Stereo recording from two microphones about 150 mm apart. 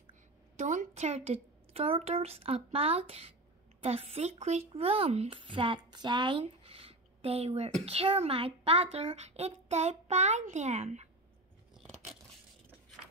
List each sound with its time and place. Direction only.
0.6 s a child's voice: 55° right (ahead or behind)
11.8 s biting: centre (ahead or behind)